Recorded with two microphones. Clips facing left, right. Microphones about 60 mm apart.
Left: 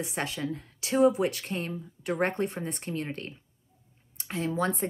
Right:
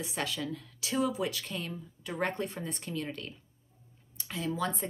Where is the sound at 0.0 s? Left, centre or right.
Left.